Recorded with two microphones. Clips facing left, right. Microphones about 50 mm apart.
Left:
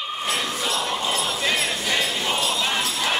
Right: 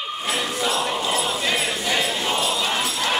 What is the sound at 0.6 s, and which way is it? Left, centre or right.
Music, centre.